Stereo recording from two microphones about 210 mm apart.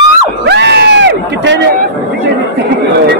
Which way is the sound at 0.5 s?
55° right (ahead or behind).